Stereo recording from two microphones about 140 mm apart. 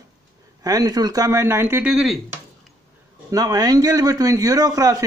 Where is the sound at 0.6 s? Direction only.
25° right (ahead or behind).